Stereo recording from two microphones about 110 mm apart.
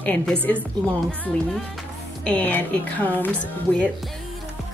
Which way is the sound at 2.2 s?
15° left (ahead or behind).